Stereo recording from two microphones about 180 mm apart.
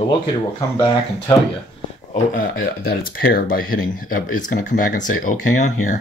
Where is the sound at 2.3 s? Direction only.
55° left (ahead or behind).